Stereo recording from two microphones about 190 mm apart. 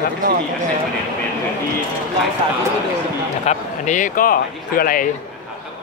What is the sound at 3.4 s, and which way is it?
Speech, 40° left (ahead or behind).